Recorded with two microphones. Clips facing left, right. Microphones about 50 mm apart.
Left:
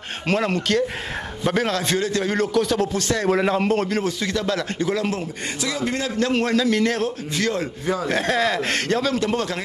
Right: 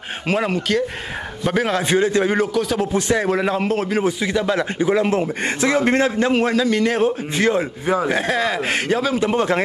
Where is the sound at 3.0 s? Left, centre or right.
Centre.